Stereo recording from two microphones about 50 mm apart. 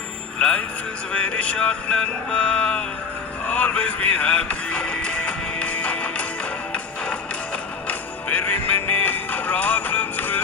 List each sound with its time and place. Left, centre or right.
0.4 s speech: left
1.1 s music: left
8.3 s music: left